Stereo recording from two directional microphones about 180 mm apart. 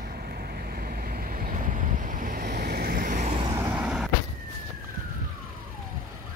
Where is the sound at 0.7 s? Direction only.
55° right (ahead or behind).